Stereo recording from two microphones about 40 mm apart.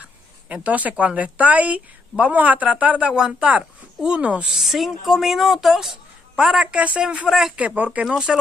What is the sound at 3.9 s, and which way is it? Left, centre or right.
Speech, right.